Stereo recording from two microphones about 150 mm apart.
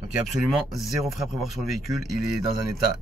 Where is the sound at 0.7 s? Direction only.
Centre (ahead or behind).